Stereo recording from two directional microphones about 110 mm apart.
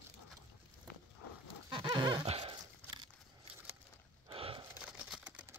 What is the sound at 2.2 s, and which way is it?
Horse, 65° right (ahead or behind).